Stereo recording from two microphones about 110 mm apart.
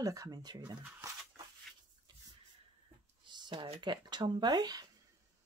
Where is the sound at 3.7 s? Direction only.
45° right (ahead or behind).